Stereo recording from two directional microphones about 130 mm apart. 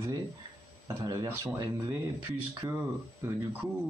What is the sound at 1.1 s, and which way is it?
Speech, 25° right (ahead or behind).